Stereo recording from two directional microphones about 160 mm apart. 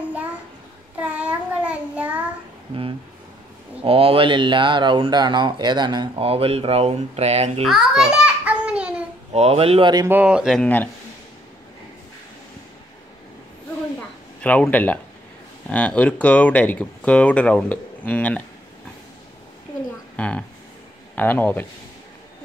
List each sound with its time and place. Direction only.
0.9 s child singing: 10° right (ahead or behind)
3.8 s speech: 35° right (ahead or behind)
7.6 s a sound: centre (ahead or behind)
9.3 s speech: 40° right (ahead or behind)
10.0 s speech: 10° right (ahead or behind); by 10.9 s 10° left (ahead or behind)
14.4 s speech: 10° left (ahead or behind)
20.2 s speech: 10° left (ahead or behind)